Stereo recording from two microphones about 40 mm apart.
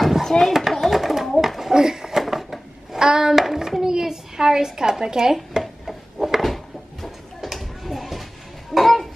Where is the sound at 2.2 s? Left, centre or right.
Centre.